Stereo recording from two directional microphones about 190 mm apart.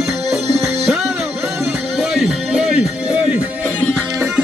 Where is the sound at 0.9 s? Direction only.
5° right (ahead or behind).